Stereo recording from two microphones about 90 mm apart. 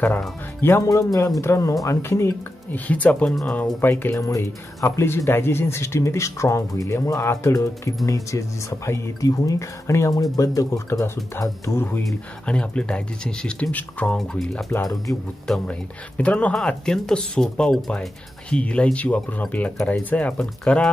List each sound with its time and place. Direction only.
0.6 s speech: 25° left (ahead or behind)
0.8 s speech: 40° left (ahead or behind)
2.7 s speech: 15° left (ahead or behind)
4.1 s speech: 35° left (ahead or behind)
12.4 s speech: 10° left (ahead or behind)
14.1 s speech: 5° left (ahead or behind)